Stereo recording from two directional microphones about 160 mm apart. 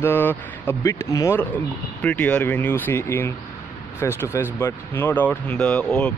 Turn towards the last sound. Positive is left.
turn(degrees=5)  # may be behind; listen again after turning